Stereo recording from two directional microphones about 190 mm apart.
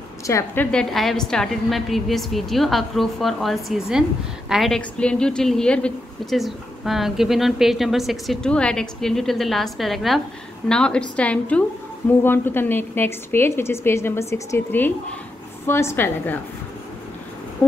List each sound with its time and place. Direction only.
0.3 s a woman's voice: 15° left (ahead or behind)
0.7 s a woman's voice: 5° left (ahead or behind)